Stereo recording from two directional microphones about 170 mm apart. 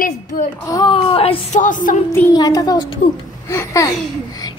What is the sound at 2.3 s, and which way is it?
Speech, 25° left (ahead or behind).